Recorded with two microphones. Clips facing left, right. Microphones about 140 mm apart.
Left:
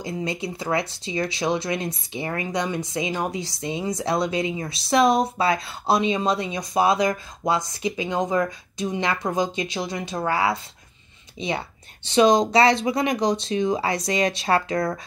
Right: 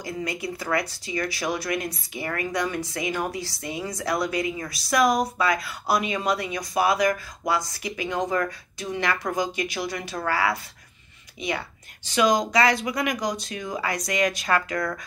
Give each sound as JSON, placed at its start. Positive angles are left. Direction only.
{"t": 0.0, "sound": "speech", "side_deg": 25}